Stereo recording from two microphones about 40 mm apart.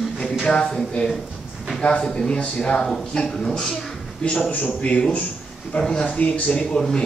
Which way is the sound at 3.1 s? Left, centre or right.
Centre.